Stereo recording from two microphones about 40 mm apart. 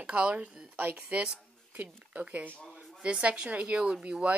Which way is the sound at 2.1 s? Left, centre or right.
Right.